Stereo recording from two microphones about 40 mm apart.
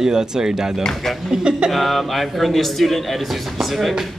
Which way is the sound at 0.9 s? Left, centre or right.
Centre.